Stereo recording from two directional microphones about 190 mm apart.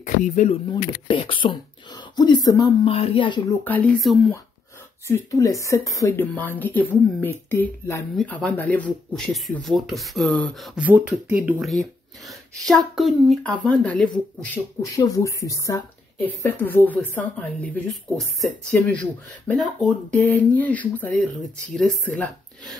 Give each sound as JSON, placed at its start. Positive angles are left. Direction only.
{"t": 0.0, "sound": "speech", "side_deg": 40}
{"t": 1.0, "sound": "speech", "side_deg": 25}
{"t": 2.9, "sound": "speech", "side_deg": 30}
{"t": 3.6, "sound": "speech", "side_deg": 10}
{"t": 5.0, "sound": "speech", "side_deg": 15}
{"t": 15.0, "sound": "speech", "side_deg": 15}